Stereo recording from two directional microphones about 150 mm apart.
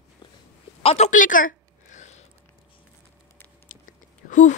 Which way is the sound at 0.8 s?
40° left (ahead or behind).